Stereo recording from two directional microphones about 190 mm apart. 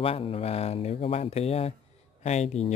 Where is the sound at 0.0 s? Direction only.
30° left (ahead or behind).